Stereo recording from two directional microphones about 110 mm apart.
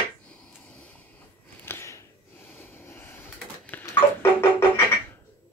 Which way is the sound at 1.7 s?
25° left (ahead or behind).